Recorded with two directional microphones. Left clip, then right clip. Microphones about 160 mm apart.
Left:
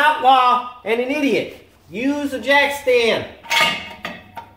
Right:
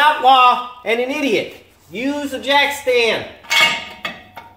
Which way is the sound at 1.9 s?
15° right (ahead or behind).